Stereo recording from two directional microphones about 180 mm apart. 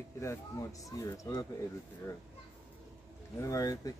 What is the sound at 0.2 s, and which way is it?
Speech, 15° left (ahead or behind).